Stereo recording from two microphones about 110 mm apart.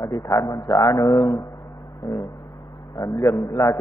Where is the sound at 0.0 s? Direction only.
30° left (ahead or behind).